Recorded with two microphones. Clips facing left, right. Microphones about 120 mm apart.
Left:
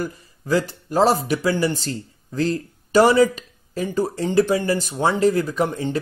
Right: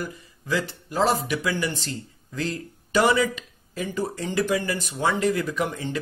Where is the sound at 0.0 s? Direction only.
40° left (ahead or behind).